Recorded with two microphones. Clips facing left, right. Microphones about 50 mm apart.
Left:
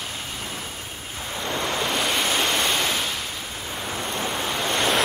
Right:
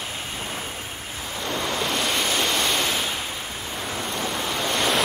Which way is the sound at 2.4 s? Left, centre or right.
Centre.